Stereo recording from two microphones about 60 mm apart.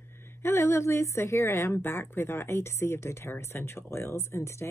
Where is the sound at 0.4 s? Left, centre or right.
Left.